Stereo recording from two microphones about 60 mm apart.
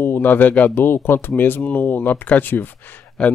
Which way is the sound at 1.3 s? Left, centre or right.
Left.